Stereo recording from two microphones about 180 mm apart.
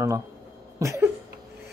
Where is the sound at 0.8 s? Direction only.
15° right (ahead or behind).